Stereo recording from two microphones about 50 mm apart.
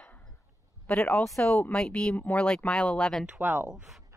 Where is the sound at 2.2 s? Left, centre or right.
Left.